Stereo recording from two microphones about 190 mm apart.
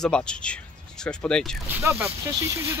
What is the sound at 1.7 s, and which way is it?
Speech, 15° right (ahead or behind).